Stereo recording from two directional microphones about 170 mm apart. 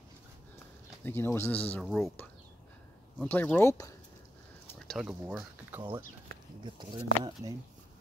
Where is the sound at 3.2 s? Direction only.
10° left (ahead or behind).